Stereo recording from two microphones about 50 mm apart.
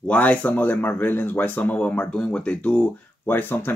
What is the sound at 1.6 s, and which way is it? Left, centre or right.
Speech, left.